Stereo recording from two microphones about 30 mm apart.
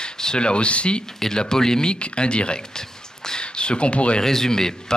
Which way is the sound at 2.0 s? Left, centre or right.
Left.